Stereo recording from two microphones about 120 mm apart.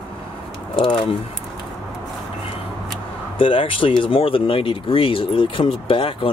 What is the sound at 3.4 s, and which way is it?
Speech, 50° left (ahead or behind).